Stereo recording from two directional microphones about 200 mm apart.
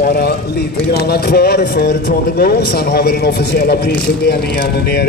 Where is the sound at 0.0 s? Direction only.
50° left (ahead or behind).